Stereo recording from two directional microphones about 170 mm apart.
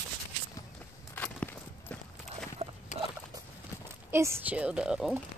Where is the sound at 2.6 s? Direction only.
40° right (ahead or behind).